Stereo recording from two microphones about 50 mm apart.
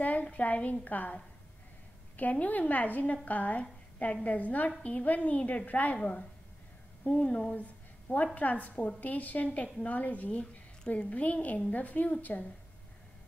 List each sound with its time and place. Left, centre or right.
0.0 s a woman's voice: left
2.1 s a woman's voice: left
7.1 s a woman's voice: left
7.5 s a sound: left
8.4 s a woman's voice: left